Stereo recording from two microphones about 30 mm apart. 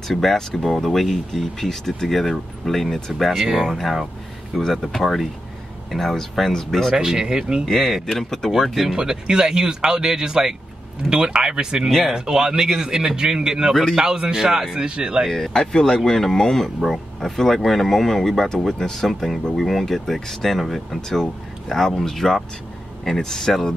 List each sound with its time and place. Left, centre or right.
0.1 s speech: centre
3.4 s speech: centre
4.5 s speech: centre
6.9 s speech: right
7.6 s speech: centre
8.1 s speech: centre
8.5 s speech: centre
8.9 s speech: right
11.1 s speech: right
14.4 s speech: centre
15.2 s speech: centre
15.5 s speech: centre
21.1 s speech: centre